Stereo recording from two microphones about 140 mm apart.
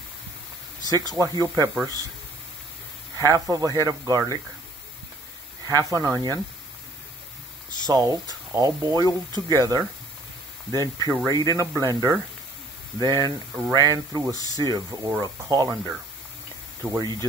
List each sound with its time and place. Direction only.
0.9 s speech: 25° right (ahead or behind)
3.2 s speech: 25° right (ahead or behind)
5.7 s speech: 25° right (ahead or behind)
7.8 s speech: 25° right (ahead or behind)
14.3 s speech: 25° left (ahead or behind)
14.6 s speech: 30° right (ahead or behind)
17.0 s speech: 30° right (ahead or behind)